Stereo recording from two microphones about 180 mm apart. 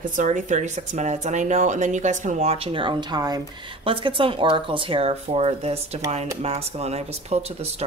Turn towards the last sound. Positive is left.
turn(degrees=-35)  # may be behind; listen again after turning